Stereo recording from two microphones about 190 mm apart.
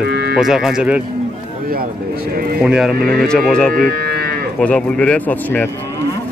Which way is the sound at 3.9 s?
55° right (ahead or behind).